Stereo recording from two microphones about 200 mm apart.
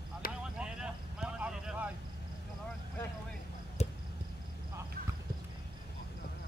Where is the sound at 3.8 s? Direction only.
30° left (ahead or behind).